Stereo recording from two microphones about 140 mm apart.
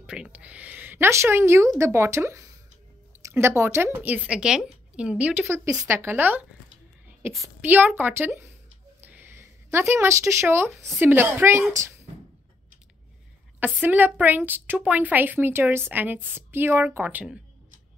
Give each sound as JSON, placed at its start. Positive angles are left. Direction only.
{"t": 0.0, "sound": "a woman's voice", "side_deg": -10}
{"t": 7.4, "sound": "a woman's voice", "side_deg": -15}
{"t": 9.0, "sound": "a sound", "side_deg": -15}
{"t": 11.0, "sound": "a woman's voice", "side_deg": -15}
{"t": 13.7, "sound": "a woman's voice", "side_deg": -15}